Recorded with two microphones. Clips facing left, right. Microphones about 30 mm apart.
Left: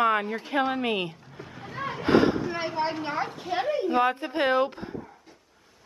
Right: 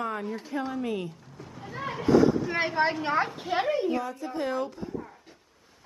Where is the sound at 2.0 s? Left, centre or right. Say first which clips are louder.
Even; left.